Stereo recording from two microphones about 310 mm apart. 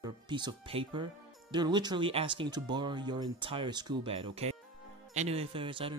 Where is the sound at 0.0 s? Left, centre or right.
Centre.